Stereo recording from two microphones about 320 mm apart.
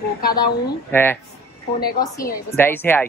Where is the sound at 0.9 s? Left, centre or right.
Centre.